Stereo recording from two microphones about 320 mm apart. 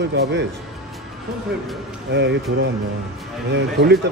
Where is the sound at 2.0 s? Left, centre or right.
Right.